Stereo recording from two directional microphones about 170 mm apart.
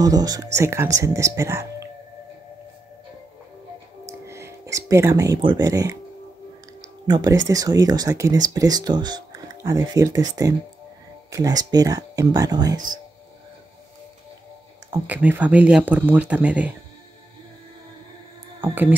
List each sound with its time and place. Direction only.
0.0 s speech: 20° right (ahead or behind)
4.0 s a sound: 15° right (ahead or behind)
5.7 s speech: 20° right (ahead or behind)
7.1 s speech: 25° right (ahead or behind)
14.9 s speech: 10° right (ahead or behind)
18.6 s speech: 10° right (ahead or behind)